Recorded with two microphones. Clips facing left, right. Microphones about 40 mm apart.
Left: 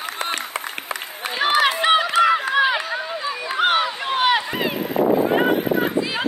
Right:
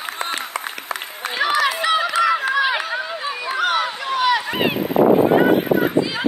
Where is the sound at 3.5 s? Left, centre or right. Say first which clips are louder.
Left 2 dB; left.